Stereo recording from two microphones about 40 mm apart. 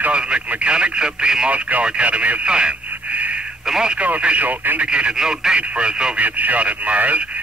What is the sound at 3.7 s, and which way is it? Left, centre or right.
Speech, right.